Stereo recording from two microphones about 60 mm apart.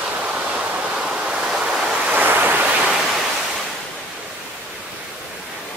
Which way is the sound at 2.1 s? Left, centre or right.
Right.